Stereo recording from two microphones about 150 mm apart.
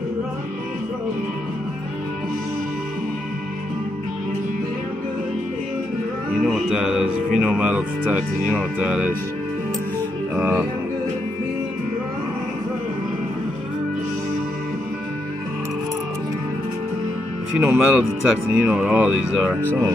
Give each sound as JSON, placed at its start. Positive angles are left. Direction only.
{"t": 6.4, "sound": "music", "side_deg": -5}
{"t": 7.3, "sound": "speech", "side_deg": -5}
{"t": 10.3, "sound": "speech", "side_deg": -15}
{"t": 17.5, "sound": "speech", "side_deg": -5}